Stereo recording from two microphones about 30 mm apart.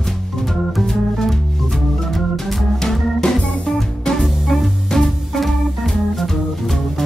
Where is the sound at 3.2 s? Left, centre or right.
Left.